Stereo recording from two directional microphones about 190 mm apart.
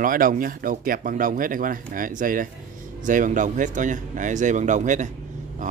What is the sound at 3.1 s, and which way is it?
Cutlery, 45° right (ahead or behind).